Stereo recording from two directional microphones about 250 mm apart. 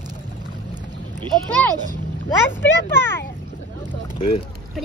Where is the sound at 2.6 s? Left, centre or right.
Centre.